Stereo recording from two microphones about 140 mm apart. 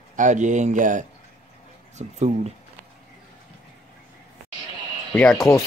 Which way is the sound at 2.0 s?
55° right (ahead or behind).